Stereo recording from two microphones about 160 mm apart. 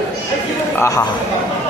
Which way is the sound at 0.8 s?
20° left (ahead or behind).